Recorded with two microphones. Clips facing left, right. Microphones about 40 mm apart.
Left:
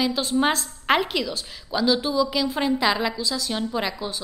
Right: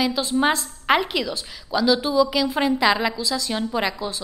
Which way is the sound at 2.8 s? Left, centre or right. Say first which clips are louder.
Right 3 dB; centre.